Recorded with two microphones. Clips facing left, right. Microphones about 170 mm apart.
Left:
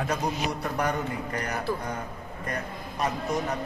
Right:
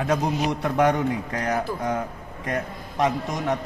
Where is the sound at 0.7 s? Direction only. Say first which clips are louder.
Right 11 dB; 90° right.